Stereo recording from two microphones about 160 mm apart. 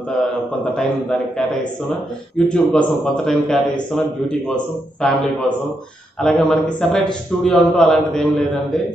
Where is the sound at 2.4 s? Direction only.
5° left (ahead or behind).